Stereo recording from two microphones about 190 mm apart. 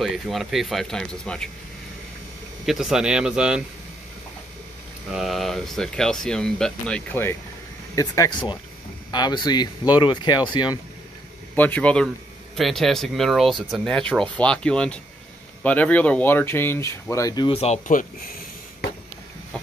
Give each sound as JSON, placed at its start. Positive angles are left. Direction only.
{"t": 0.0, "sound": "speech", "side_deg": 0}
{"t": 2.6, "sound": "speech", "side_deg": 0}
{"t": 5.1, "sound": "speech", "side_deg": 0}
{"t": 11.5, "sound": "speech", "side_deg": 10}
{"t": 17.5, "sound": "speech", "side_deg": 35}